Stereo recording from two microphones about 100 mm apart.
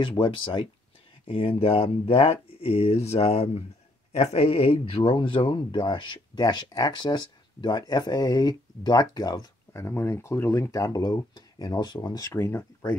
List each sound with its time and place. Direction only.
0.2 s speech: 55° left (ahead or behind); by 9.8 s 40° left (ahead or behind)
9.8 s speech: 25° left (ahead or behind)